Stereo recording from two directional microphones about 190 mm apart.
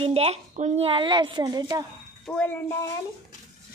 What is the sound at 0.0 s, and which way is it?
Speech, 30° right (ahead or behind).